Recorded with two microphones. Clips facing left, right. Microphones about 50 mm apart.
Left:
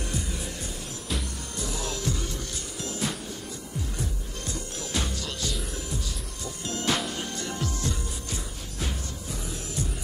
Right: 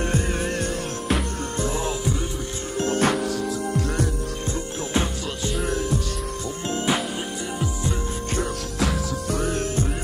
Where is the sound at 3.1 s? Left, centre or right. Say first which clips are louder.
Right 12 dB; right.